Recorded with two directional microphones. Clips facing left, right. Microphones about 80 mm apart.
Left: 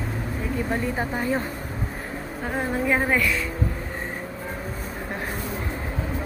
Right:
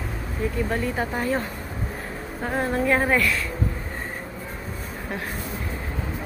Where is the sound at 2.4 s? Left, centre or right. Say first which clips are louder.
Right 2 dB; centre.